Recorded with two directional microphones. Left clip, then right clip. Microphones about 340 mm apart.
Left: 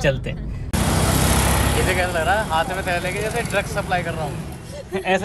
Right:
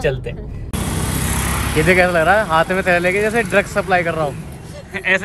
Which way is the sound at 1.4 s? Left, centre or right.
Left.